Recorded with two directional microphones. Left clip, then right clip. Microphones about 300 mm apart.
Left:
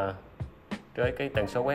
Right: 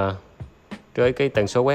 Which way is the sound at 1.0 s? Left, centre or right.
Centre.